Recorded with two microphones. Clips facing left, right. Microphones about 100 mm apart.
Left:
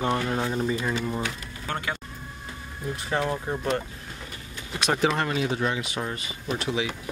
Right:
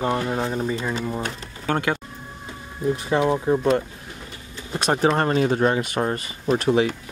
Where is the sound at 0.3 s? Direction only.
10° right (ahead or behind).